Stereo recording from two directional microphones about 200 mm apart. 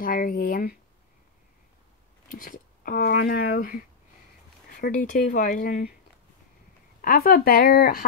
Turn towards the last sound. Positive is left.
turn(degrees=50)  # may be behind; listen again after turning